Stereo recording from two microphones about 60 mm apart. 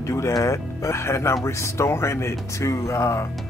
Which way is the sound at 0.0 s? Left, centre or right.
Left.